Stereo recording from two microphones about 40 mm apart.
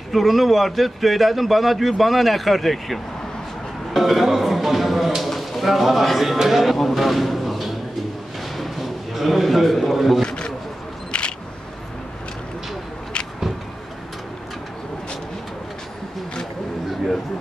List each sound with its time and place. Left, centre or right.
0.1 s a man's voice: centre
10.2 s a sound: left
11.1 s single-lens reflex camera: left